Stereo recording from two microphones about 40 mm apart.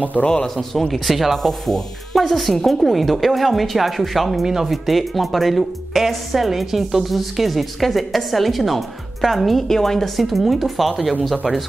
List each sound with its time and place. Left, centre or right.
0.2 s speech: left
0.6 s speech: centre